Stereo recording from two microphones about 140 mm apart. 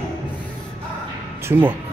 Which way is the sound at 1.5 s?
15° right (ahead or behind).